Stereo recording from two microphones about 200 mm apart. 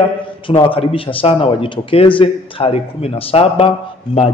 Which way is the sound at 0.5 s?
25° left (ahead or behind).